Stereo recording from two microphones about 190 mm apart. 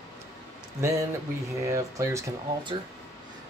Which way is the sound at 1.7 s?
15° right (ahead or behind).